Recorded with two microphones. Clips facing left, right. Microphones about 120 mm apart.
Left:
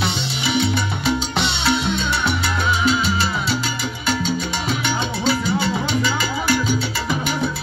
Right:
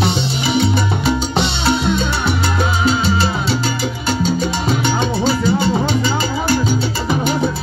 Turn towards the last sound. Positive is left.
turn(degrees=-30)  # may be behind; listen again after turning